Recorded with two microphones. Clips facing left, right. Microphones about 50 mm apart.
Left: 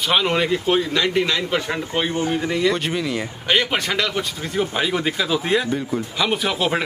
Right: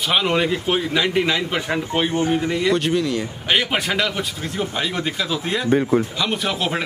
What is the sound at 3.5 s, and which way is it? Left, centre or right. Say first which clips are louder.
Speech: even; centre.